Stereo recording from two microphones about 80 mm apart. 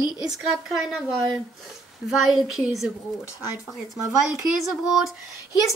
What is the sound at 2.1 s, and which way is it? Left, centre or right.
Speech, centre.